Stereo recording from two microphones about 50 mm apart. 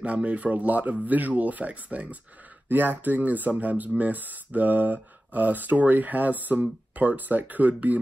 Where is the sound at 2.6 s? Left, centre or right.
Right.